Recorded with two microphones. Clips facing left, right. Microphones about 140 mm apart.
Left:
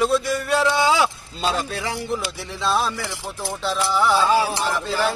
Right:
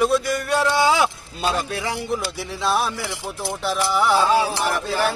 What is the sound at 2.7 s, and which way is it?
Music, 15° right (ahead or behind).